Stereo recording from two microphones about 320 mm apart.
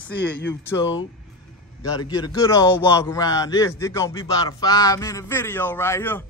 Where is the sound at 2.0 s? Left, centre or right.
Centre.